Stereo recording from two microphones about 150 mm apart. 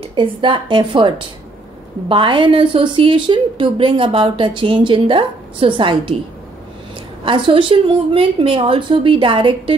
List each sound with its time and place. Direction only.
0.0 s a woman's voice: 35° right (ahead or behind)
7.2 s a woman's voice: 35° right (ahead or behind)